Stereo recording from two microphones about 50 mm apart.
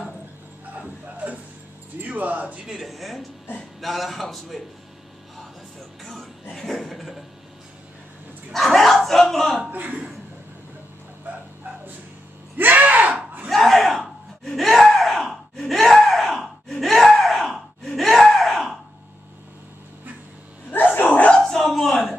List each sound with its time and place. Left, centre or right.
0.7 s music: right
2.0 s speech: right
2.4 s speech: centre
2.8 s a man's voice: centre
6.5 s a man's voice: centre
8.5 s speech: centre
9.7 s a man's voice: right
11.2 s dog: right
12.5 s a sound: right
13.5 s a sound: centre
20.7 s dog: left
21.4 s a sound: centre